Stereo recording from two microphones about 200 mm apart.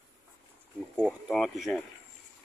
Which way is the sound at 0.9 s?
Centre (ahead or behind).